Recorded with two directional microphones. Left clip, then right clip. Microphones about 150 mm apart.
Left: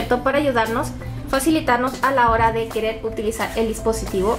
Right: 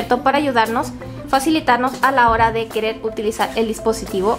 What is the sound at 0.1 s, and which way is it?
A woman's voice, 25° right (ahead or behind).